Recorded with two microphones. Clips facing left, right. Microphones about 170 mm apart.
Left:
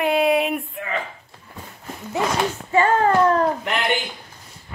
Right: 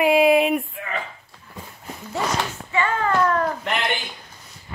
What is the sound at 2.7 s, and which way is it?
Speech, 40° left (ahead or behind).